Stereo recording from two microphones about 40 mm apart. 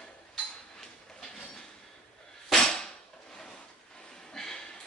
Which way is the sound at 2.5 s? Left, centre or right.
Centre.